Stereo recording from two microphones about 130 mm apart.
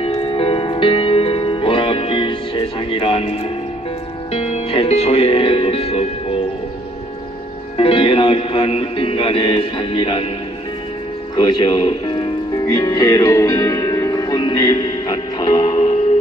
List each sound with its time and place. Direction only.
0.0 s music: 45° left (ahead or behind)
7.7 s music: 45° left (ahead or behind)
11.3 s speech: 35° left (ahead or behind)
12.5 s music: 25° left (ahead or behind)
15.7 s music: 55° left (ahead or behind)